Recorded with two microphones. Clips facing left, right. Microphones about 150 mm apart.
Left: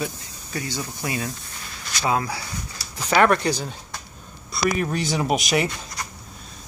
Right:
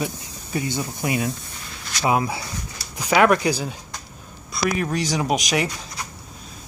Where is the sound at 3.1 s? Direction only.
5° right (ahead or behind).